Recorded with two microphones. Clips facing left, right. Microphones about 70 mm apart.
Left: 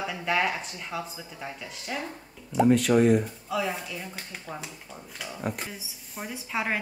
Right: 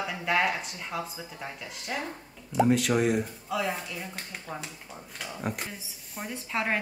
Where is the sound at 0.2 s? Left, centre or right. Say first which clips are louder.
Even; centre.